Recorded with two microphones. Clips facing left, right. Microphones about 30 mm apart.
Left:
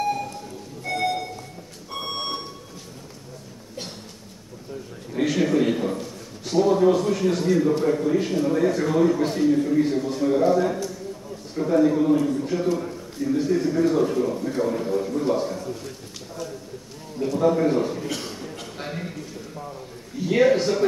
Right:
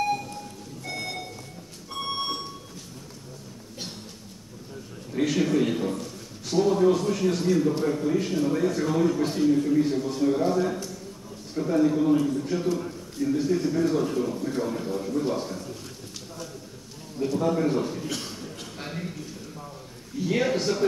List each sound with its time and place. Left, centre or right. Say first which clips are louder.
0.8 s music: left 9 dB; centre
2.0 s alarm clock: left 1 dB; centre
5.1 s a man's voice: left 2 dB; centre
17.2 s a man's voice: left 4 dB; centre
20.2 s a man's voice: left 6 dB; centre